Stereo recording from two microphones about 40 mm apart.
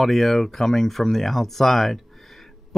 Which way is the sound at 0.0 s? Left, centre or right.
Centre.